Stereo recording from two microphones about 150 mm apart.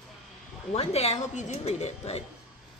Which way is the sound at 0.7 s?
45° left (ahead or behind).